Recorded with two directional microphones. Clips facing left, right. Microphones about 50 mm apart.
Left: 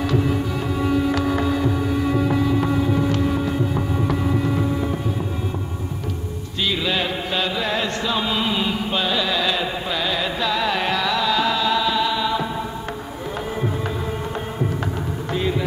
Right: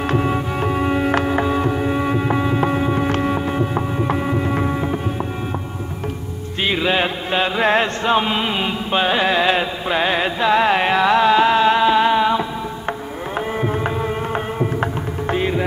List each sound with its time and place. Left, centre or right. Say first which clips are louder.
0.0 s music: right 2 dB; right
6.6 s music: right 4 dB; right
7.6 s carnatic music: right 6 dB; right
13.6 s music: right 5 dB; right